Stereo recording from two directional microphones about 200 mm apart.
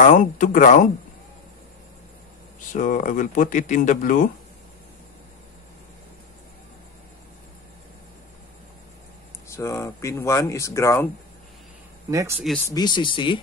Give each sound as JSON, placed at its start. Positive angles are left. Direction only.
{"t": 0.0, "sound": "speech", "side_deg": 40}
{"t": 2.7, "sound": "speech", "side_deg": 40}
{"t": 9.5, "sound": "speech", "side_deg": 15}
{"t": 12.1, "sound": "speech", "side_deg": -15}
{"t": 12.6, "sound": "speech", "side_deg": 20}